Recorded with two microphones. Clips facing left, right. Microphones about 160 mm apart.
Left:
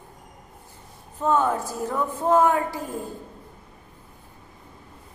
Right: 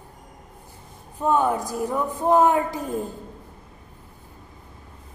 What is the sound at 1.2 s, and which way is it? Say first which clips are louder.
A woman's voice: right 1 dB; 15° right (ahead or behind).